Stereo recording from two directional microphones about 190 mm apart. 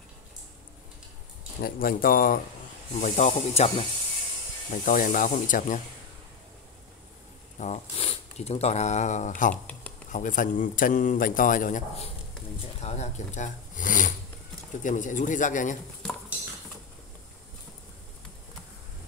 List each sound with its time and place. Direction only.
1.6 s a man's voice: 50° left (ahead or behind); by 3.8 s 35° left (ahead or behind)
4.6 s a man's voice: 45° left (ahead or behind)
7.5 s speech: 35° left (ahead or behind)
9.5 s speech: 5° left (ahead or behind)
10.1 s a man's voice: 45° left (ahead or behind)